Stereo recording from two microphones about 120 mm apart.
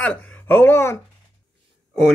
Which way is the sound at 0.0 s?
10° left (ahead or behind).